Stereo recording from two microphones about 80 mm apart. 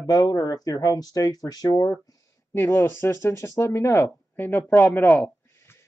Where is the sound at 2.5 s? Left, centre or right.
Left.